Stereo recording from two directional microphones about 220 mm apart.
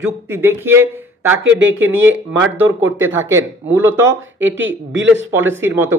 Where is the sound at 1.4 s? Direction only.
60° right (ahead or behind).